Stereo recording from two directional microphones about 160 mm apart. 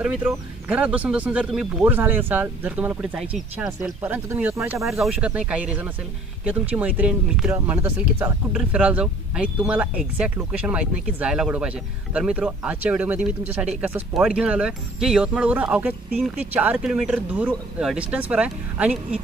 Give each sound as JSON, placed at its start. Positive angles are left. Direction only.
{"t": 0.0, "sound": "speech", "side_deg": -5}
{"t": 4.0, "sound": "speech", "side_deg": -10}